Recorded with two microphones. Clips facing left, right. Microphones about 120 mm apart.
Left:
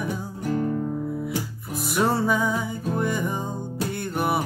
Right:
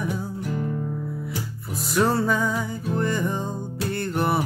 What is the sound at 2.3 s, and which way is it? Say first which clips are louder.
Music: even; 15° left (ahead or behind).